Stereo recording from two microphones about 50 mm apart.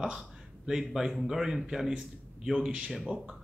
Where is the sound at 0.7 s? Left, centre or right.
Centre.